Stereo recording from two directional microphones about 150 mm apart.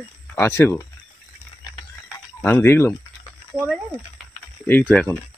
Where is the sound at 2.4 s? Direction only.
15° left (ahead or behind).